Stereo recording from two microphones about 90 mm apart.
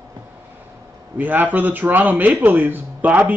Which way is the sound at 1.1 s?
20° right (ahead or behind).